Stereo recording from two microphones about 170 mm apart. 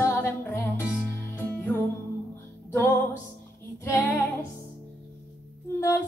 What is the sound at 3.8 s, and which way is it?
Female singing, 10° left (ahead or behind).